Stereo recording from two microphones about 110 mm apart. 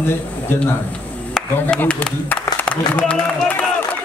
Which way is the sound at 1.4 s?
5° left (ahead or behind).